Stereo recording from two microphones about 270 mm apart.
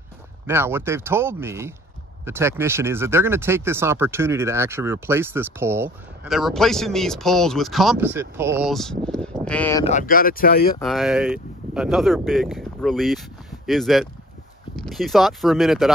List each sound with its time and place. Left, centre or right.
0.5 s speech: centre
9.8 s speech: left
10.8 s speech: centre